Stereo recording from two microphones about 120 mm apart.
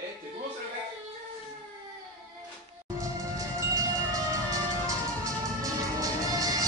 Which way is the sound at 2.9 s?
25° right (ahead or behind).